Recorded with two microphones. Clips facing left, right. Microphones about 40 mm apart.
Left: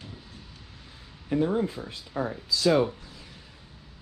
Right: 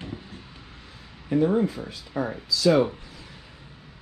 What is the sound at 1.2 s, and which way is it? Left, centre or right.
Speech, centre.